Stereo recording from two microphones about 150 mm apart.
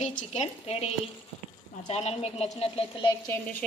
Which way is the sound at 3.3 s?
10° left (ahead or behind).